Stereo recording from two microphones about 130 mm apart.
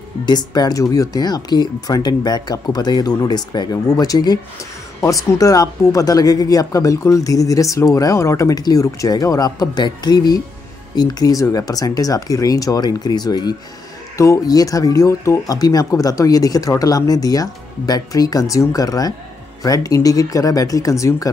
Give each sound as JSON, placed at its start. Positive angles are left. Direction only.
{"t": 0.2, "sound": "speech", "side_deg": 35}